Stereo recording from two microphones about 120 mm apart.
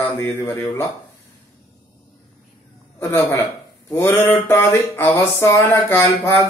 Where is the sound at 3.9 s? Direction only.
20° left (ahead or behind).